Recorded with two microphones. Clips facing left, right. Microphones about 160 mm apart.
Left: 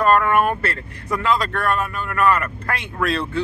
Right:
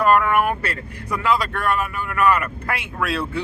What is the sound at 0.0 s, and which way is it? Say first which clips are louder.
Vehicle: left 1 dB; 10° right (ahead or behind).